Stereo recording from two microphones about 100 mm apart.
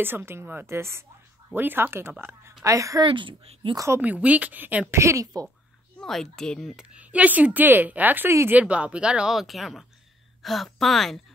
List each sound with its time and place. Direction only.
0.0 s a woman's voice: 20° right (ahead or behind)
3.0 s speech: 55° right (ahead or behind)
3.7 s a woman's voice: 30° right (ahead or behind)
4.0 s speech: 15° right (ahead or behind)
4.9 s a woman's voice: 30° right (ahead or behind)
5.9 s speech: 5° left (ahead or behind); by 8.5 s 25° right (ahead or behind)
8.5 s a woman's voice: 10° right (ahead or behind)